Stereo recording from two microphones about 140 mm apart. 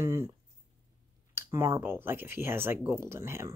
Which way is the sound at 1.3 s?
20° right (ahead or behind).